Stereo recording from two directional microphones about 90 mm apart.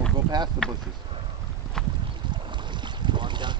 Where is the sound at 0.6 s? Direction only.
10° left (ahead or behind).